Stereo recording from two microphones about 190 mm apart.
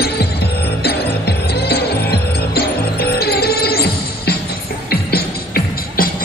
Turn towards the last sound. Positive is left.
turn(degrees=55)  # may be behind; listen again after turning